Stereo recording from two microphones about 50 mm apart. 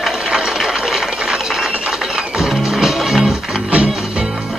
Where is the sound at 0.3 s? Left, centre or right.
Centre.